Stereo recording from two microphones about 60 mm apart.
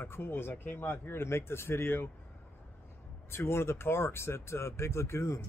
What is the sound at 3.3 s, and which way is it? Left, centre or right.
Speech, left.